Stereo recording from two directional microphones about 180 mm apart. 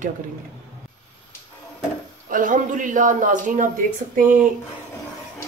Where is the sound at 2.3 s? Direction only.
50° right (ahead or behind).